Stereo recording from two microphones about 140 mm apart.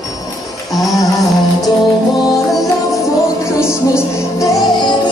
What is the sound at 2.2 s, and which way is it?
Music, 25° left (ahead or behind).